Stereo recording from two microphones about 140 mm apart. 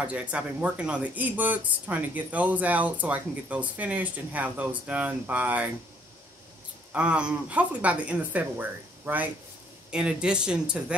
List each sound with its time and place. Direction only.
0.0 s speech: 10° right (ahead or behind)
6.9 s speech: 10° right (ahead or behind)